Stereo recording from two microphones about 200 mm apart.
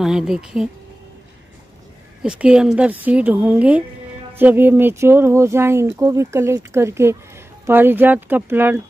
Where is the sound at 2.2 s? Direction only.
5° right (ahead or behind).